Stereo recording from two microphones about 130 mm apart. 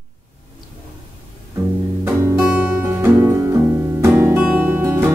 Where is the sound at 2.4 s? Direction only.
10° right (ahead or behind).